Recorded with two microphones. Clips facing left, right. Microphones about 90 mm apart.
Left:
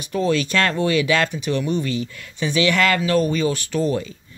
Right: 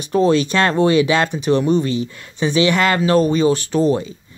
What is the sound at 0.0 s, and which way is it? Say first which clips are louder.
Speech: right 6 dB; 30° right (ahead or behind).